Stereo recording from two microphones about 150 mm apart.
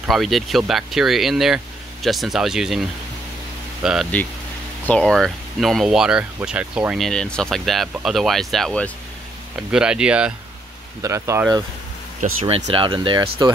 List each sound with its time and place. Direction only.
0.1 s speech: centre (ahead or behind)
3.8 s speech: 5° right (ahead or behind)
9.7 s speech: 5° right (ahead or behind)
11.0 s speech: 20° right (ahead or behind)
12.4 s speech: 45° right (ahead or behind)